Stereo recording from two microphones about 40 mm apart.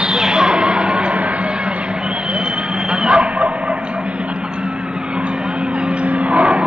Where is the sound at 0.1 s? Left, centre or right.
Right.